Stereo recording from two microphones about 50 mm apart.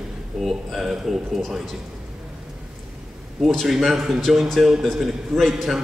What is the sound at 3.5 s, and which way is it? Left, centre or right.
A man's voice, centre.